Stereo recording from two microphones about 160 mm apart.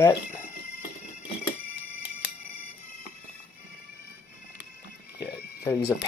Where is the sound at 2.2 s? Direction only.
90° left.